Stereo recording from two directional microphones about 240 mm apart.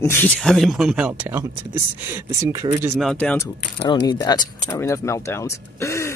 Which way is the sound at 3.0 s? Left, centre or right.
Centre.